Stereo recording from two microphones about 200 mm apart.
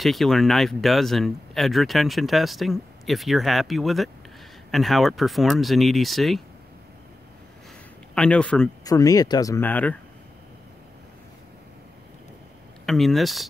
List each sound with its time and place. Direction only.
0.0 s speech: centre (ahead or behind)
8.1 s speech: 5° left (ahead or behind)
8.8 s speech: 15° left (ahead or behind)
12.8 s speech: centre (ahead or behind)